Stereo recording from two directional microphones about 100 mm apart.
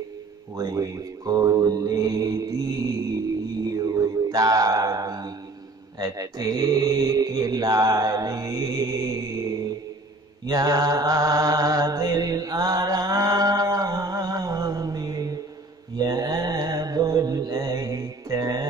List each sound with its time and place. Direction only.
0.6 s mantra: 35° right (ahead or behind)
10.4 s mantra: 40° right (ahead or behind)